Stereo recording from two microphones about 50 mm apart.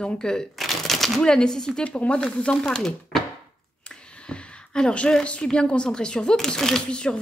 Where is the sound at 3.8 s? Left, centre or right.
Left.